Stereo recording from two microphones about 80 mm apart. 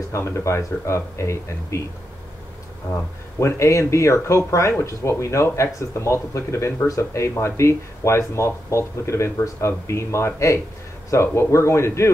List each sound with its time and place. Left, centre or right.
0.1 s speech: left
3.3 s speech: left